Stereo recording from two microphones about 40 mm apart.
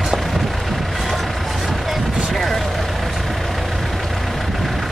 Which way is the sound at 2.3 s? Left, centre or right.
Centre.